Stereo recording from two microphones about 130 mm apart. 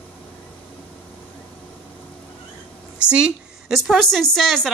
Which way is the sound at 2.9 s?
10° right (ahead or behind).